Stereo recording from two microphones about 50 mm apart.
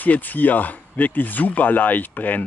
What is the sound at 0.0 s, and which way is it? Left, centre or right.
Speech, left.